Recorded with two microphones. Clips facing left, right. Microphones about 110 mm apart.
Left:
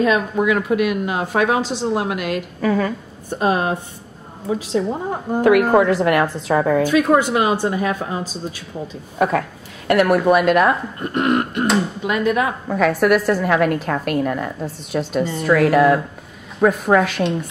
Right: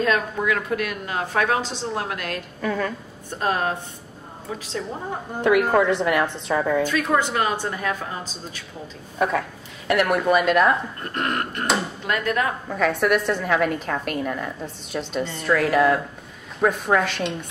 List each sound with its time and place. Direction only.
0.0 s speech: 15° left (ahead or behind)
2.6 s a woman's voice: 5° left (ahead or behind)
3.3 s speech: 15° left (ahead or behind)
5.4 s a woman's voice: centre (ahead or behind)
9.2 s a woman's voice: centre (ahead or behind)
11.0 s speech: 15° left (ahead or behind)
12.7 s a woman's voice: 5° left (ahead or behind)